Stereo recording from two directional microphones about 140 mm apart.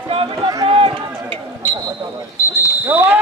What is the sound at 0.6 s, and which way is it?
Run, 40° right (ahead or behind).